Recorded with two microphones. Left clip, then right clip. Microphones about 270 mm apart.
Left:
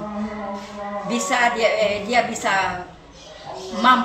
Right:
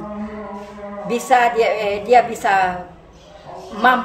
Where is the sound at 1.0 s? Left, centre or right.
Centre.